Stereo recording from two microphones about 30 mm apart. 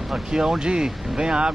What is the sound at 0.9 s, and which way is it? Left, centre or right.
Speech, centre.